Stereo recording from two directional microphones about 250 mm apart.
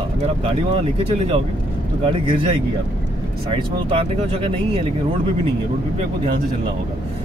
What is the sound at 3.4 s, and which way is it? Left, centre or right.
Speech, right.